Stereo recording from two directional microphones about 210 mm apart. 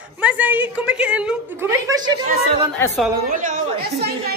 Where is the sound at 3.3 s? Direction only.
35° right (ahead or behind).